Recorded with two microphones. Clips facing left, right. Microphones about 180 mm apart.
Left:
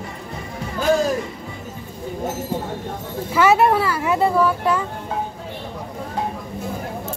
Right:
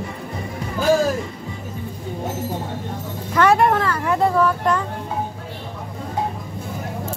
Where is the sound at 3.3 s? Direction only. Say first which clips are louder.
Even; 5° left (ahead or behind).